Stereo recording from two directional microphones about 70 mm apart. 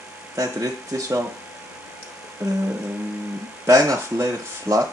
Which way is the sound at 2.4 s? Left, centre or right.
Right.